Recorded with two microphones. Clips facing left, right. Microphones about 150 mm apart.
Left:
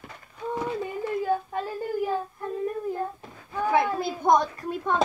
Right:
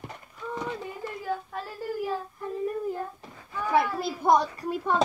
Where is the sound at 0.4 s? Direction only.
25° left (ahead or behind).